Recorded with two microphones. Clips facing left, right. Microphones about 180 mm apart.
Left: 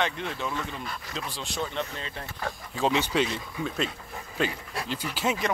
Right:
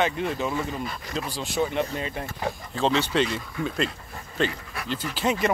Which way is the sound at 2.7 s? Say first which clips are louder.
Right 2 dB; 10° left (ahead or behind).